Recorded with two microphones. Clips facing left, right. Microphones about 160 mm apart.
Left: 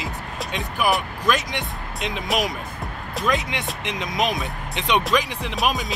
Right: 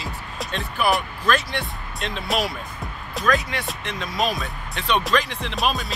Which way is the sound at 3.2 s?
20° left (ahead or behind).